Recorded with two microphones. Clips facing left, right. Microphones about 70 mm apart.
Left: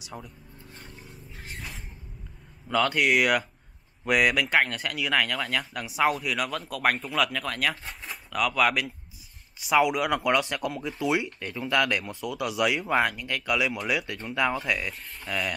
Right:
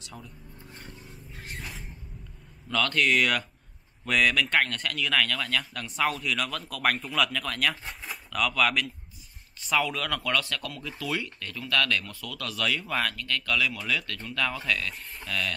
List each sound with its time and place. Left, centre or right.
0.0 s speech: centre
1.5 s a sound: centre
2.7 s speech: centre